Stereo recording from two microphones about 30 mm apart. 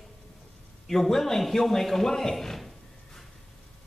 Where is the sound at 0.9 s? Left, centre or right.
Centre.